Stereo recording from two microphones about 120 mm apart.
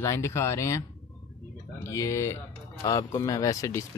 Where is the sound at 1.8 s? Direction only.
25° left (ahead or behind).